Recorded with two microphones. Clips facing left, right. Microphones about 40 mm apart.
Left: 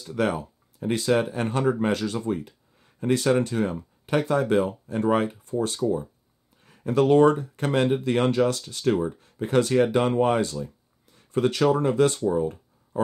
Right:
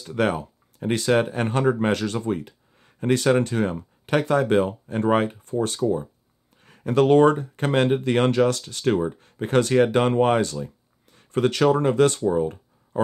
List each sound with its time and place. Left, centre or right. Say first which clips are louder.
0.0 s speech: right 2 dB; right
6.6 s speech: right 2 dB; right
12.2 s speech: right 2 dB; right